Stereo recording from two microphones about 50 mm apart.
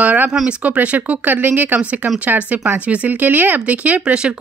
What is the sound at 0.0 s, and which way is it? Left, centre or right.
Speech, right.